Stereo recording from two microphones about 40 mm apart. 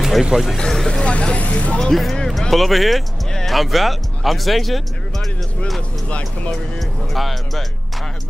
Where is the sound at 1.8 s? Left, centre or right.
Centre.